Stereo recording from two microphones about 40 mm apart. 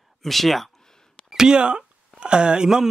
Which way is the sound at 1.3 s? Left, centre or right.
Centre.